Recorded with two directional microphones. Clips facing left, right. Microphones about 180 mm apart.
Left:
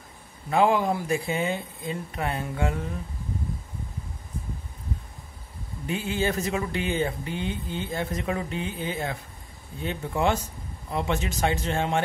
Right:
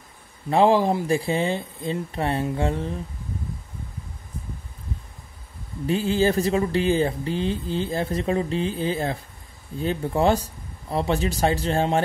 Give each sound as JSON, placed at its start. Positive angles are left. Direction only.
{"t": 0.5, "sound": "speech", "side_deg": -30}
{"t": 5.9, "sound": "speech", "side_deg": -35}